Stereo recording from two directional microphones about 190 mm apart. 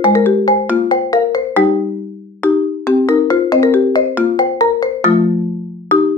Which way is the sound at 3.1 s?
20° left (ahead or behind).